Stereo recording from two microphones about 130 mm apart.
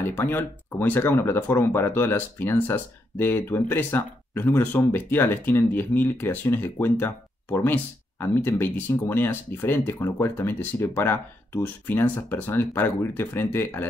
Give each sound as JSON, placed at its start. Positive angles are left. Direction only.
{"t": 0.0, "sound": "speech", "side_deg": 15}